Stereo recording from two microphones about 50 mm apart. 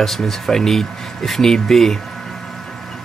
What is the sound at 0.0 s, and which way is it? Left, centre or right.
Speech, centre.